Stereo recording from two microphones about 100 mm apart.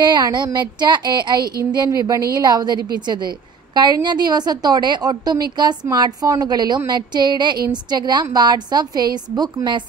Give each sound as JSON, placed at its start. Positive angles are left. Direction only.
{"t": 0.0, "sound": "a woman's voice", "side_deg": -45}